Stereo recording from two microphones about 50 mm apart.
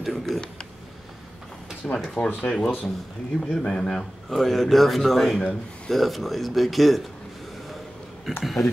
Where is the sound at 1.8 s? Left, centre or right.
Centre.